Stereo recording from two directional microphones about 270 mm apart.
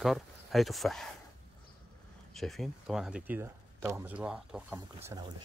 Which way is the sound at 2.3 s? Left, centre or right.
Centre.